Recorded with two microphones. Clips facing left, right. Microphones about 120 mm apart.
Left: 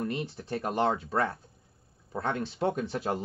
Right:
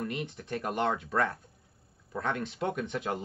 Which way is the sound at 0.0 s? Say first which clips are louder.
Left 2 dB; 30° left (ahead or behind).